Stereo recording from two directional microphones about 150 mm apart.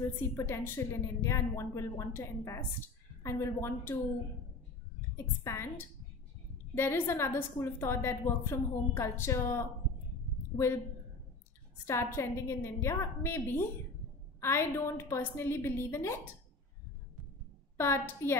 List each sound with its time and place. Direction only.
0.2 s a woman's voice: 15° left (ahead or behind)
5.1 s a woman's voice: 15° left (ahead or behind)
11.8 s a woman's voice: 15° left (ahead or behind)
17.7 s a woman's voice: 15° left (ahead or behind)